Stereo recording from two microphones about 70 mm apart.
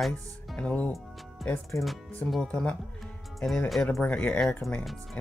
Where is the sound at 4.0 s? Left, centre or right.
Centre.